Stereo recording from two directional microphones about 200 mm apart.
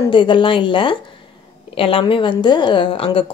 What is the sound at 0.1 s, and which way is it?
A woman's voice, 25° left (ahead or behind).